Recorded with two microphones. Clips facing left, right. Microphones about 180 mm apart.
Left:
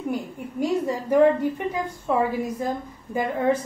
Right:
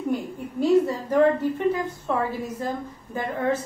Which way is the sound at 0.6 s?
15° left (ahead or behind).